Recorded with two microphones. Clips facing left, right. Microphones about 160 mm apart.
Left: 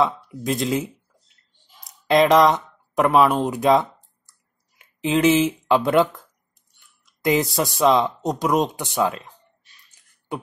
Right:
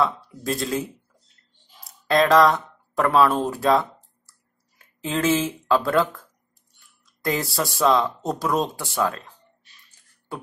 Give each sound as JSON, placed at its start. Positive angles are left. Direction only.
{"t": 0.0, "sound": "speech", "side_deg": 20}
{"t": 1.9, "sound": "speech", "side_deg": 20}
{"t": 4.3, "sound": "clicking", "side_deg": 20}
{"t": 7.2, "sound": "speech", "side_deg": 20}